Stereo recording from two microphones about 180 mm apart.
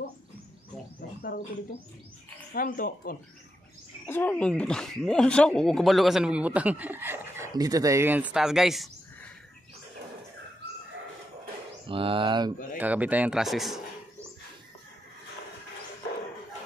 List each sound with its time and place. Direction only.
2.5 s speech: 55° left (ahead or behind)
4.0 s speech: 10° left (ahead or behind)
11.8 s speech: 30° right (ahead or behind)
12.7 s speech: 10° right (ahead or behind)